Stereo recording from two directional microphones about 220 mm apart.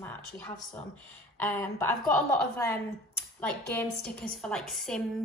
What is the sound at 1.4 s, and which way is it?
A woman's voice, 10° left (ahead or behind).